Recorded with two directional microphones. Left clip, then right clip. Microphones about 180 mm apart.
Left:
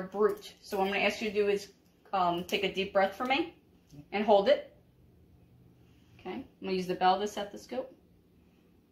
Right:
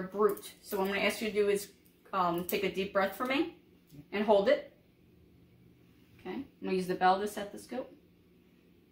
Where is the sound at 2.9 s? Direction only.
15° right (ahead or behind).